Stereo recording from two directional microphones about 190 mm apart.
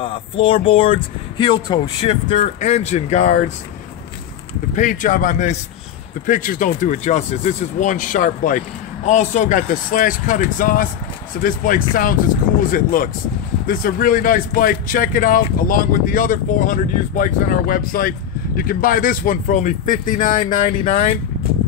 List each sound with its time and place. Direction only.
0.0 s speech: 30° left (ahead or behind)
4.7 s speech: 45° left (ahead or behind)